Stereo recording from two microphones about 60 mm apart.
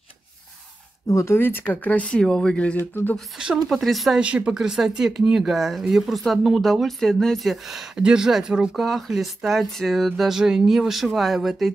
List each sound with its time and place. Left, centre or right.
1.0 s speech: left
2.2 s speech: centre
2.9 s speech: left
3.4 s speech: centre
3.8 s speech: centre
4.2 s speech: right; by 11.7 s centre